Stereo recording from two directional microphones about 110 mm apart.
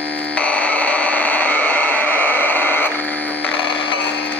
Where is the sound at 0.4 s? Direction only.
10° left (ahead or behind).